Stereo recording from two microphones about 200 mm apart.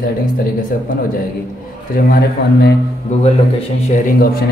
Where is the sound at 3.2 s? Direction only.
35° left (ahead or behind); by 4.4 s 50° left (ahead or behind).